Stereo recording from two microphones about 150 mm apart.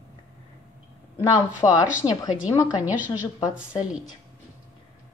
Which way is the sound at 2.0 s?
35° left (ahead or behind).